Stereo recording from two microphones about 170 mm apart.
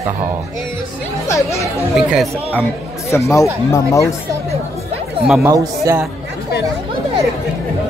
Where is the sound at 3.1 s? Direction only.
15° left (ahead or behind).